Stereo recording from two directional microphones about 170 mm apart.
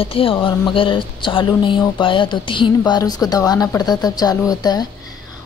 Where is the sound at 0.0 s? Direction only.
30° left (ahead or behind).